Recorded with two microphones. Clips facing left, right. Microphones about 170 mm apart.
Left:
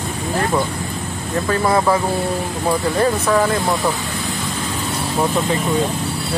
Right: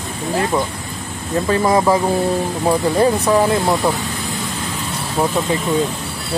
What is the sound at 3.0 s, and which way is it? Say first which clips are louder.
Speech: right 2 dB; 20° right (ahead or behind).